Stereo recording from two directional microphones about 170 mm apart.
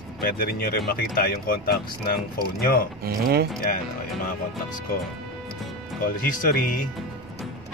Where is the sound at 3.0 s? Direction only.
60° right (ahead or behind).